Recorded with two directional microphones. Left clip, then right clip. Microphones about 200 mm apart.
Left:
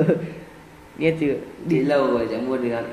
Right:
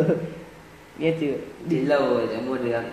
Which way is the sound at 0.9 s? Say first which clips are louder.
Left 3 dB; 30° left (ahead or behind).